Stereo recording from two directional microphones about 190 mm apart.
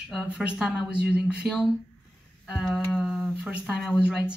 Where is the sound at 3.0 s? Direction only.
5° right (ahead or behind).